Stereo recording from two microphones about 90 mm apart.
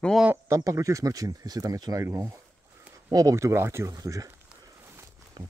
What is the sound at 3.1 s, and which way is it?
Speech, 40° right (ahead or behind).